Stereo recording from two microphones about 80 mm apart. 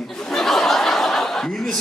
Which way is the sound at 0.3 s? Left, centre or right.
Centre.